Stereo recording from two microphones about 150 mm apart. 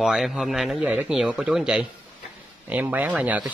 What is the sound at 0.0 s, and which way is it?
A man's voice, 5° right (ahead or behind).